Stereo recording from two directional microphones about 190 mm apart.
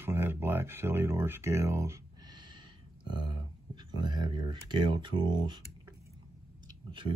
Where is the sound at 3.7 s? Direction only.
25° right (ahead or behind).